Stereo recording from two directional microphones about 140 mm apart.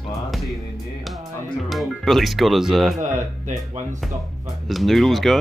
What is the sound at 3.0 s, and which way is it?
Speech, 60° right (ahead or behind).